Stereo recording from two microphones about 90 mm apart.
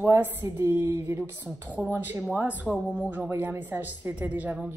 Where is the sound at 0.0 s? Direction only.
25° right (ahead or behind).